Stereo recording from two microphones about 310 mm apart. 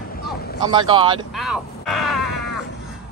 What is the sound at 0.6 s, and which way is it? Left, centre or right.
Speech, centre.